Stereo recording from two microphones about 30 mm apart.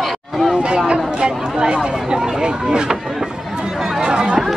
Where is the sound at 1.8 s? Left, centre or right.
Right.